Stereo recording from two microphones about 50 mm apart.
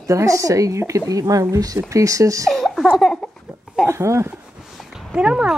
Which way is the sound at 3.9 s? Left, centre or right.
Right.